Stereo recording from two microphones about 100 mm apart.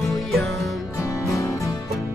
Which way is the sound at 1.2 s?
30° left (ahead or behind).